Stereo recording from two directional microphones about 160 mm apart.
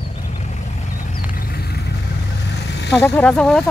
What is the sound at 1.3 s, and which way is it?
Vehicle, 65° left (ahead or behind).